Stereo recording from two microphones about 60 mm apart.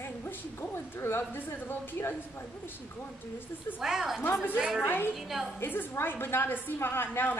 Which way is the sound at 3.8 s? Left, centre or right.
Centre.